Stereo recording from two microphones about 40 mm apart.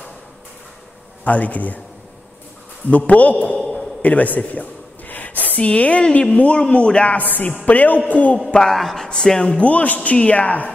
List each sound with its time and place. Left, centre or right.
1.2 s a man's voice: left
3.1 s a man's voice: left
4.0 s a sound: left
5.6 s a man's voice: left
7.2 s a woman's voice: left
8.7 s speech: centre
9.6 s a man's voice: left